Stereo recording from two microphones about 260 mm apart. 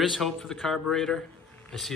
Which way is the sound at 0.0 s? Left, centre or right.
Centre.